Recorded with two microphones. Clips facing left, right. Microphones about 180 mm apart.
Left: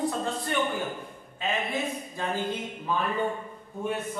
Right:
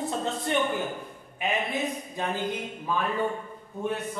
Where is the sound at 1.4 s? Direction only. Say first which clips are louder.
Right 1 dB; 20° right (ahead or behind).